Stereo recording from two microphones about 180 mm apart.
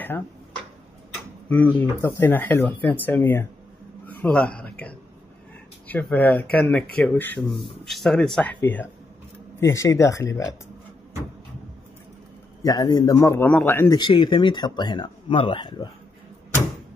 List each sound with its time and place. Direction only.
1.5 s speech: 10° left (ahead or behind)
4.0 s a sound: 5° left (ahead or behind)
5.9 s speech: 10° left (ahead or behind)
9.6 s speech: 15° left (ahead or behind)
12.6 s speech: 20° left (ahead or behind)
13.9 s speech: 25° left (ahead or behind)